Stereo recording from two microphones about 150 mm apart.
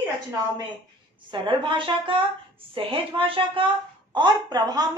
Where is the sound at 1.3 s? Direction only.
35° right (ahead or behind).